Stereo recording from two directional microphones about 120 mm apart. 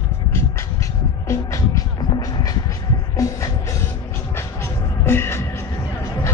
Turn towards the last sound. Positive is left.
turn(degrees=20)  # may be behind; listen again after turning